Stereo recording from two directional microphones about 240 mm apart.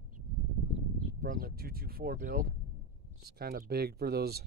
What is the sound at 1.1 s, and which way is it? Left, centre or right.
Speech, right.